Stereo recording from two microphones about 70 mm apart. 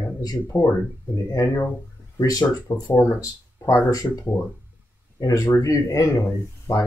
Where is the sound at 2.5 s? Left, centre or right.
Left.